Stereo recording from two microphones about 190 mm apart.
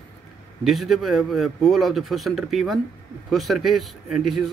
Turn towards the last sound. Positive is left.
turn(degrees=0)  # may be behind; listen again after turning